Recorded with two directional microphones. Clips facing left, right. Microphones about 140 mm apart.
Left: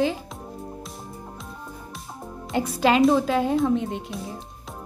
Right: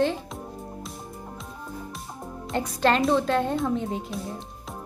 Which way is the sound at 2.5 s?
5° left (ahead or behind).